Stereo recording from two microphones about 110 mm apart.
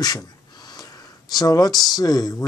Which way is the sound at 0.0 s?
35° left (ahead or behind).